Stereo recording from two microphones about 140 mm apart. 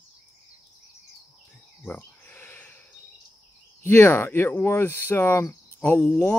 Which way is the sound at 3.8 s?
15° left (ahead or behind).